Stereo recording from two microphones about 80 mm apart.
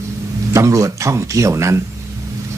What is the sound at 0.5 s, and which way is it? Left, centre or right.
Speech, right.